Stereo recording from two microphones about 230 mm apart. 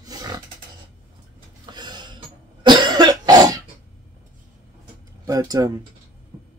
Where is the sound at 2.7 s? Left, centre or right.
Centre.